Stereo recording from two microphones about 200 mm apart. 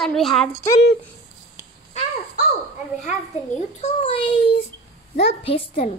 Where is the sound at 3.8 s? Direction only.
30° left (ahead or behind).